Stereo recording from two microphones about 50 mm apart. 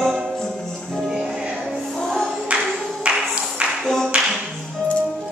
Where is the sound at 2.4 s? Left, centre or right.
Right.